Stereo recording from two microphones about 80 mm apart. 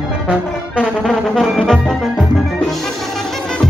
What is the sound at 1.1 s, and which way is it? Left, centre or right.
Music, centre.